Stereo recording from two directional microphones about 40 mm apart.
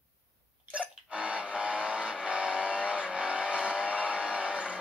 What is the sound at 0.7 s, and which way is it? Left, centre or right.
Vehicle, right.